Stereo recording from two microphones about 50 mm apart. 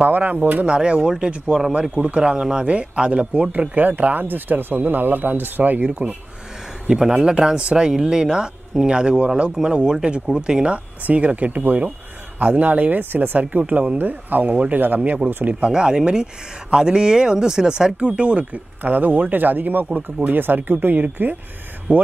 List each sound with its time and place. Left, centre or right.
0.0 s speech: right
0.7 s speech: right
1.7 s speech: right
5.9 s speech: right
15.2 s speech: right
15.6 s speech: centre
18.8 s speech: right